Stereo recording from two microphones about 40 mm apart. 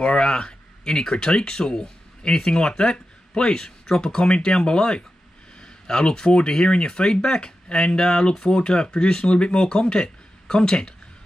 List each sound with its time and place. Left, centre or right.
0.0 s speech: left